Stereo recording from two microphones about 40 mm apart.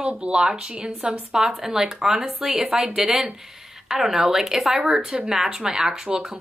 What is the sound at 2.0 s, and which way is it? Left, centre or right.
Speech, centre.